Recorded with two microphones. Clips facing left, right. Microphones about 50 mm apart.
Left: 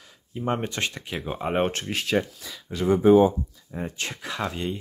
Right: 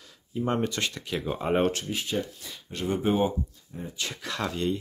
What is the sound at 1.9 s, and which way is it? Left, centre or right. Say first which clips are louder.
Speech: left 5 dB; left.